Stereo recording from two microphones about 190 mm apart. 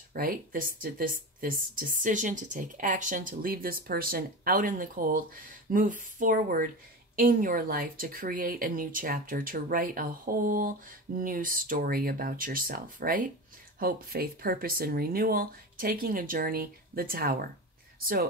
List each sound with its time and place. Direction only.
0.1 s speech: 50° right (ahead or behind)